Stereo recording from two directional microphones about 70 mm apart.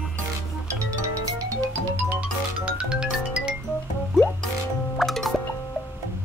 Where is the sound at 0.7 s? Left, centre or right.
Right.